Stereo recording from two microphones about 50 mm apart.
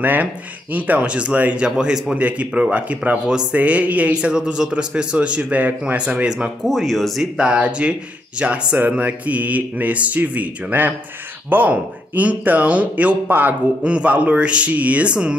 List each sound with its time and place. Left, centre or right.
0.0 s speech: right
1.6 s a man's voice: centre; by 5.9 s right
5.9 s a man's voice: right
6.6 s speech: centre
7.3 s a man's voice: right
8.7 s a man's voice: right